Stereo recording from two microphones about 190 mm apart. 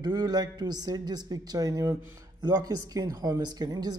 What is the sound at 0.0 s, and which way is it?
Speech, 20° right (ahead or behind).